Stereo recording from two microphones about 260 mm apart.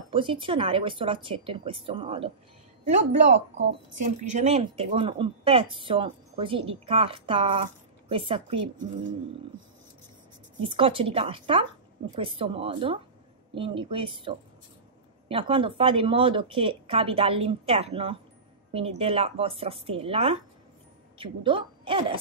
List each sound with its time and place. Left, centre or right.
0.1 s speech: centre
10.7 s a woman's voice: centre